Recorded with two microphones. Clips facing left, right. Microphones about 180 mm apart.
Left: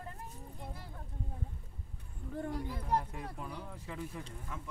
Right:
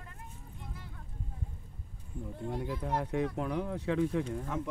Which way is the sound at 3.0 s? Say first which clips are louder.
Right 11 dB; 75° right (ahead or behind).